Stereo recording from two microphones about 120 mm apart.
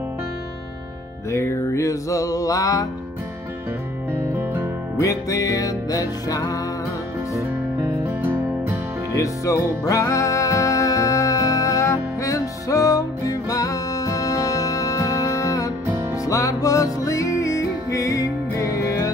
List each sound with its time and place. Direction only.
1.3 s music: 20° left (ahead or behind)
4.1 s music: 20° right (ahead or behind)
4.9 s music: 30° left (ahead or behind)
7.3 s music: 20° right (ahead or behind)
9.2 s music: 30° left (ahead or behind)